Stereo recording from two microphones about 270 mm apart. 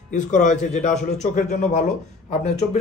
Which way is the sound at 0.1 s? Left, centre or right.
Left.